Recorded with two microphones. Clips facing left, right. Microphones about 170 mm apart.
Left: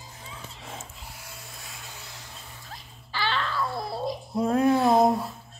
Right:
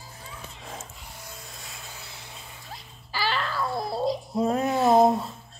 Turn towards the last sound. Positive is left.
turn(degrees=0)  # may be behind; listen again after turning